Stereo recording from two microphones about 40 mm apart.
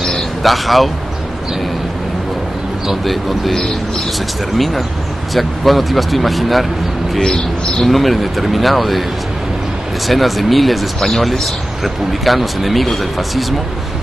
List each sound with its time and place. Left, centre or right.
0.4 s speech: centre
3.1 s speech: centre
7.2 s speech: centre
7.8 s speech: centre
10.0 s speech: centre